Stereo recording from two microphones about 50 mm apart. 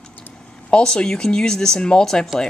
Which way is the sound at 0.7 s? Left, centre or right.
Centre.